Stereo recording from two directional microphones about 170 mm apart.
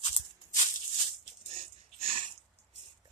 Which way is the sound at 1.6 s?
35° right (ahead or behind).